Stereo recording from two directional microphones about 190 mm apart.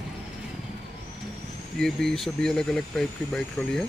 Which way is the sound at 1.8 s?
Centre (ahead or behind).